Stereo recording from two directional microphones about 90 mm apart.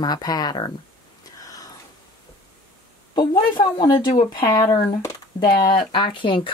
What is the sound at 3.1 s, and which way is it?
A woman's voice, 55° left (ahead or behind).